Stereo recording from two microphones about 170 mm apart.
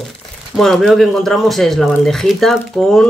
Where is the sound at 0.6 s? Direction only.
Centre (ahead or behind).